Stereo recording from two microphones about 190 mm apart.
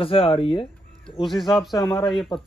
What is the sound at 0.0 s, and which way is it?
Speech, 30° left (ahead or behind).